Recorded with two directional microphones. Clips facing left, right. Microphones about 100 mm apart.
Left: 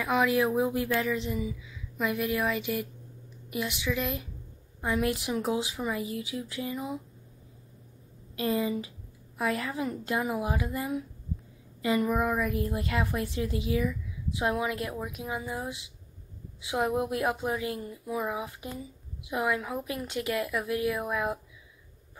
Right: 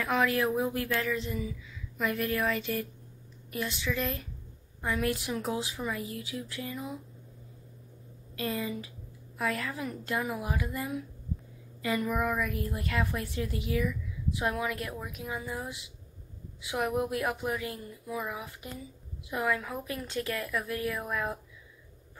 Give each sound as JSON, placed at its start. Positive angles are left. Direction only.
{"t": 0.0, "sound": "a woman's voice", "side_deg": 10}
{"t": 8.4, "sound": "a woman's voice", "side_deg": 25}